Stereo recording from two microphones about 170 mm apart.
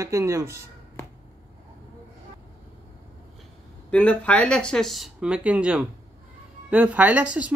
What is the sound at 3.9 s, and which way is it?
Speech, 10° left (ahead or behind).